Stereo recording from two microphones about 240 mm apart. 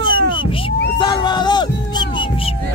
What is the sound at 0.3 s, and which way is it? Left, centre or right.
Music, left.